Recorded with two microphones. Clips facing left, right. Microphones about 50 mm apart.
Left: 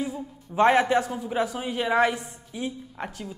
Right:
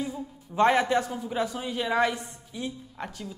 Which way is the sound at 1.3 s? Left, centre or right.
Centre.